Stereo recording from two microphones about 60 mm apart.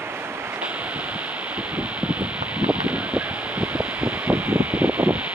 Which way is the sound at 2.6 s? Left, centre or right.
Right.